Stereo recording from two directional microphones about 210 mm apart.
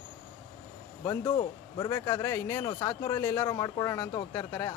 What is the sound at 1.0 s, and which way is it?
A man's voice, 15° left (ahead or behind).